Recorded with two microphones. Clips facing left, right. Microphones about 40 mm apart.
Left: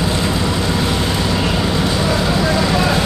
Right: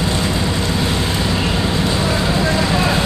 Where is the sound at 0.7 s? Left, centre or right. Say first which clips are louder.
Left 1 dB; centre.